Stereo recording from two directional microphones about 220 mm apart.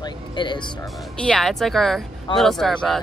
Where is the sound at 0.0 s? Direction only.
20° left (ahead or behind).